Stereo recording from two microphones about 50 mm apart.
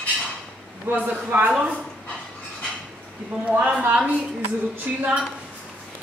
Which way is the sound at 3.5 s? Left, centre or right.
Right.